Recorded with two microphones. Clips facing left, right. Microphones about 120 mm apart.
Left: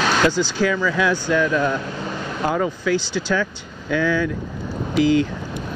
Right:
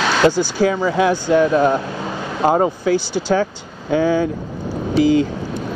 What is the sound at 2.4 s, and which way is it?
Speech, 40° right (ahead or behind).